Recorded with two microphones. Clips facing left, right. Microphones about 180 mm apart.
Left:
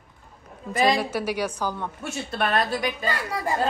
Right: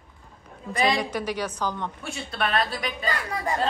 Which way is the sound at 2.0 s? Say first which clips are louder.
Left 3 dB; 50° left (ahead or behind).